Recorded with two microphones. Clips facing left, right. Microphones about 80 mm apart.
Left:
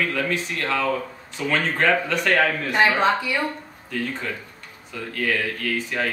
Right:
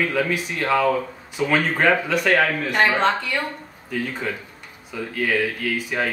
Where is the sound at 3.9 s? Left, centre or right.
Centre.